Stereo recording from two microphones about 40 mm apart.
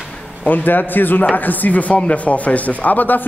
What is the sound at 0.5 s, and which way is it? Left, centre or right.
Speech, left.